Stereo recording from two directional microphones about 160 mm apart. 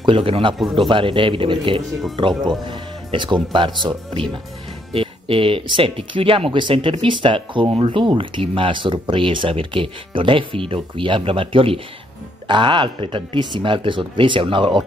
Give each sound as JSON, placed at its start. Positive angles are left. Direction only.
{"t": 0.0, "sound": "speech", "side_deg": -35}